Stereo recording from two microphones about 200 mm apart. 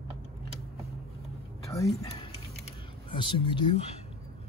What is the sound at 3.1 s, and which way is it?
Speech, 25° left (ahead or behind).